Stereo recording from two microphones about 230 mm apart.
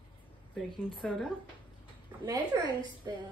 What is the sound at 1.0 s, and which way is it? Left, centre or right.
Speech, centre.